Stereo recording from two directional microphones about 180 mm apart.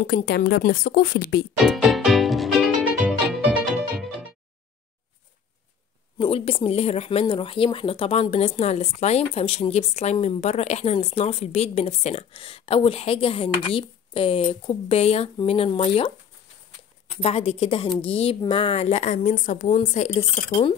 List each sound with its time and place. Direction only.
0.0 s a woman's voice: 60° left (ahead or behind)
1.6 s music: centre (ahead or behind)
6.1 s speech: 30° left (ahead or behind)
17.2 s speech: 35° left (ahead or behind)